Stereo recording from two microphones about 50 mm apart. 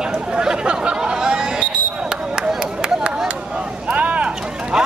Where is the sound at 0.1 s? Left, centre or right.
Centre.